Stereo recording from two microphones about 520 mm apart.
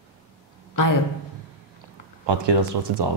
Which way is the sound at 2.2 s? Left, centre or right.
Right.